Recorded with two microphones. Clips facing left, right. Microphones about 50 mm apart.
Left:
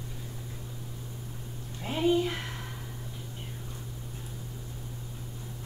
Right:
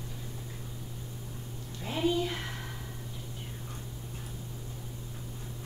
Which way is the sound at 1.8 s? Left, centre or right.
Left.